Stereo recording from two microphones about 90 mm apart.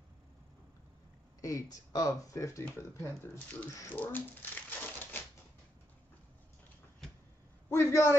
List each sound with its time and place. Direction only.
1.4 s speech: 40° left (ahead or behind)
3.9 s typewriter: 20° left (ahead or behind)
7.7 s a sound: 35° left (ahead or behind)